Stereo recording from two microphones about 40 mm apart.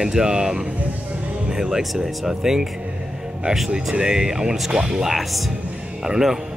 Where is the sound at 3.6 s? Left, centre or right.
Right.